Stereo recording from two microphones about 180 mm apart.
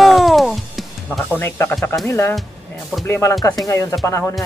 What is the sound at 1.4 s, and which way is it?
Speech, 10° left (ahead or behind).